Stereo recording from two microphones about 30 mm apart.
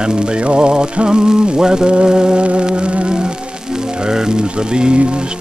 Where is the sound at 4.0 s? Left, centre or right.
Right.